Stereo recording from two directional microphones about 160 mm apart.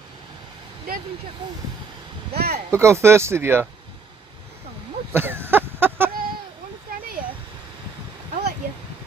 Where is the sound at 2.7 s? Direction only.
15° right (ahead or behind).